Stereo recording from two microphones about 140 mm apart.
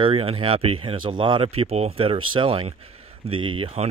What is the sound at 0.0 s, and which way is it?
Speech, 40° right (ahead or behind).